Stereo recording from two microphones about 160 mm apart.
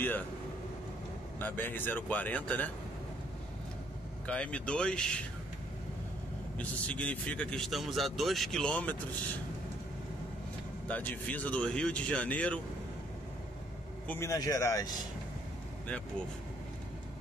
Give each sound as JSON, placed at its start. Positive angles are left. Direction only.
{"t": 1.4, "sound": "speech", "side_deg": 10}
{"t": 4.3, "sound": "speech", "side_deg": 5}
{"t": 6.6, "sound": "speech", "side_deg": 10}
{"t": 10.9, "sound": "speech", "side_deg": 10}
{"t": 14.0, "sound": "speech", "side_deg": 15}